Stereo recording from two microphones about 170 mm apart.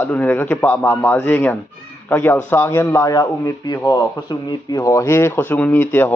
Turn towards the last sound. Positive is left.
turn(degrees=10)  # may be behind; listen again after turning